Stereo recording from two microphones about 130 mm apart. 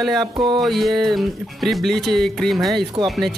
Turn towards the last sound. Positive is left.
turn(degrees=0)  # may be behind; listen again after turning